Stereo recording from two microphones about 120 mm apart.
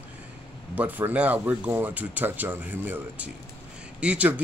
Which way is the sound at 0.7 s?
15° right (ahead or behind).